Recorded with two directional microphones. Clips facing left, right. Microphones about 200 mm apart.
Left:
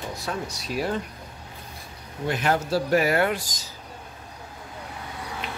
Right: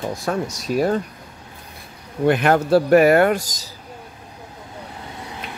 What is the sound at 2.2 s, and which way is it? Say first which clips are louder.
Speech: right 8 dB; 60° right (ahead or behind).